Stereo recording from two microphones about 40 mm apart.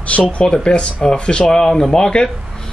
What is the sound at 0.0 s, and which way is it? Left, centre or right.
Speech, left.